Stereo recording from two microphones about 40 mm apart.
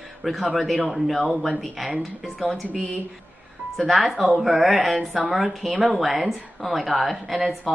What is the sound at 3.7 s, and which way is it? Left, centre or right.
Speech, centre.